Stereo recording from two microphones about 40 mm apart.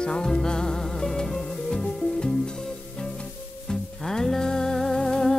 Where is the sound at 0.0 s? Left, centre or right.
Centre.